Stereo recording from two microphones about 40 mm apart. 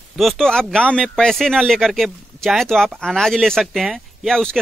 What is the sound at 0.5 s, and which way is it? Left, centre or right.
Speech, centre.